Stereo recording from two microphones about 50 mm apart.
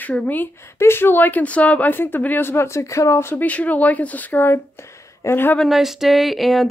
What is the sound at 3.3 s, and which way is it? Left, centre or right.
A woman's voice, left.